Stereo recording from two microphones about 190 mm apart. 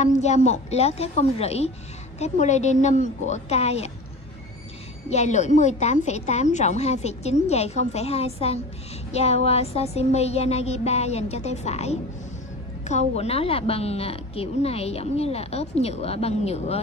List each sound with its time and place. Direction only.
0.0 s speech: 40° left (ahead or behind)
5.1 s speech: 35° left (ahead or behind)